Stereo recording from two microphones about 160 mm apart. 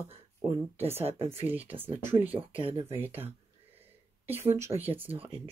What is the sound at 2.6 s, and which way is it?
Speech, 35° right (ahead or behind).